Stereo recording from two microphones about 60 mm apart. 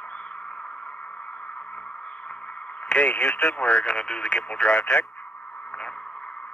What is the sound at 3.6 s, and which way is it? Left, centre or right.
Speech, centre.